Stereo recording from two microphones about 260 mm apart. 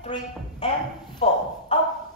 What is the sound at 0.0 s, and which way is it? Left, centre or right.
Speech, left.